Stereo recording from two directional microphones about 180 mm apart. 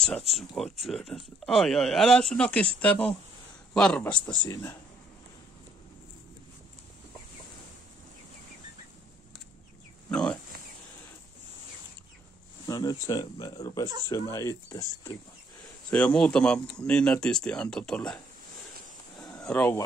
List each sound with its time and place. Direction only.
0.3 s speech: centre (ahead or behind)
10.1 s a sound: 5° left (ahead or behind)
12.6 s speech: 20° left (ahead or behind)
15.9 s speech: 5° left (ahead or behind)
19.3 s speech: 10° left (ahead or behind)